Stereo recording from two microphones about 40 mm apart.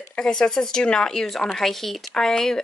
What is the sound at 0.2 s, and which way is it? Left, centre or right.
Speech, centre.